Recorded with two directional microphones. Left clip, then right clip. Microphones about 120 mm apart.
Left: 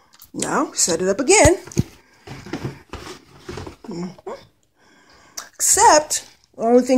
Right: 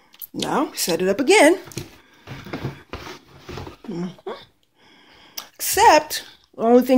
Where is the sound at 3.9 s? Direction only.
30° right (ahead or behind).